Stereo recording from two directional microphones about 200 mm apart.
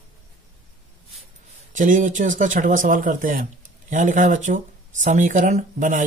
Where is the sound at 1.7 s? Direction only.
40° right (ahead or behind).